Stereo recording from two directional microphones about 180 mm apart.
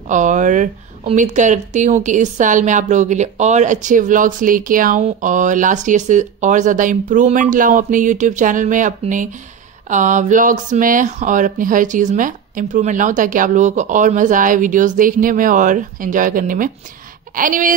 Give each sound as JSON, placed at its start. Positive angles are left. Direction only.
{"t": 0.1, "sound": "speech", "side_deg": -45}